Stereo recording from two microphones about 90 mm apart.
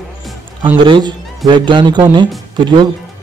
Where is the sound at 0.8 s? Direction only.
60° right (ahead or behind).